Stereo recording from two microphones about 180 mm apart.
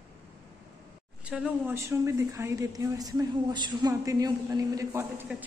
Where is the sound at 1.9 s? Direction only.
15° right (ahead or behind).